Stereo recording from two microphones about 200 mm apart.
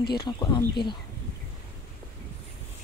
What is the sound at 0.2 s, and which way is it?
Speech, 20° left (ahead or behind).